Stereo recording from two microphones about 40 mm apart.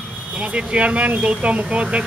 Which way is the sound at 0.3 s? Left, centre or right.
Right.